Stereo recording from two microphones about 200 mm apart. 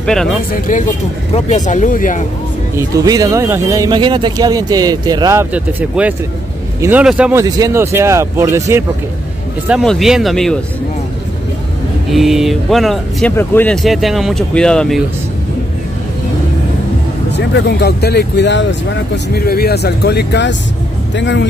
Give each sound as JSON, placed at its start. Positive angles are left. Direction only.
{"t": 0.0, "sound": "speech", "side_deg": 0}
{"t": 0.5, "sound": "speech", "side_deg": 40}
{"t": 2.7, "sound": "speech", "side_deg": -15}
{"t": 7.4, "sound": "speech", "side_deg": -20}
{"t": 9.7, "sound": "speech", "side_deg": 0}
{"t": 12.1, "sound": "speech", "side_deg": 0}
{"t": 13.8, "sound": "speech", "side_deg": 0}
{"t": 17.4, "sound": "speech", "side_deg": 55}